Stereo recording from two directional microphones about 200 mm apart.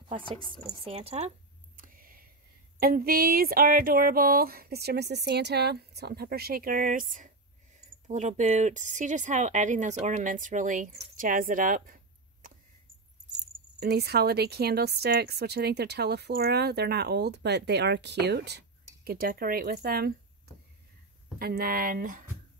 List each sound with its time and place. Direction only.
0.8 s speech: 30° right (ahead or behind)
1.8 s a sound: 45° right (ahead or behind)
2.8 s a woman's voice: 50° right (ahead or behind)
13.7 s a woman's voice: 55° right (ahead or behind)
21.4 s a woman's voice: 50° right (ahead or behind)